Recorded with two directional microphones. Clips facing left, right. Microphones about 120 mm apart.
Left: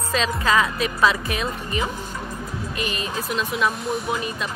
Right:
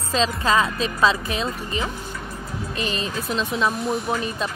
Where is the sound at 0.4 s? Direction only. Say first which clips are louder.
Even; 30° right (ahead or behind).